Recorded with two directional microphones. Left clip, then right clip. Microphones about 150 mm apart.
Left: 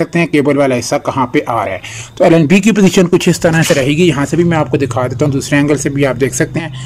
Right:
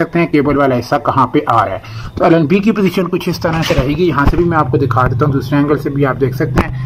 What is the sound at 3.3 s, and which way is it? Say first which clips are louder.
Speech: left 5 dB; 70° left (ahead or behind).